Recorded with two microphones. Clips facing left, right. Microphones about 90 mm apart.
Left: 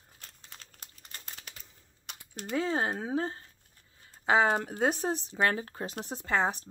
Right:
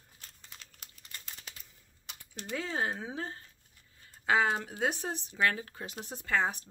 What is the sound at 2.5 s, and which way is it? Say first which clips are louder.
Speech: left 4 dB; 35° left (ahead or behind).